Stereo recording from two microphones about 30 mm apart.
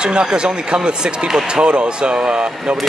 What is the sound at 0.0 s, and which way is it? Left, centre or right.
Speech, right.